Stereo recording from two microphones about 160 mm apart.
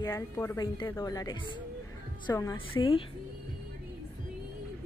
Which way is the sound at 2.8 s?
35° left (ahead or behind).